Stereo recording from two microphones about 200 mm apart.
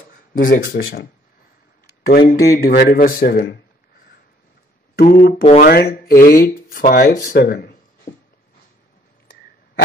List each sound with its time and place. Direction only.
0.3 s speech: 45° left (ahead or behind)
0.7 s speech: 55° left (ahead or behind)
2.0 s speech: 45° left (ahead or behind)
5.0 s speech: 40° left (ahead or behind)
5.6 s speech: 50° left (ahead or behind)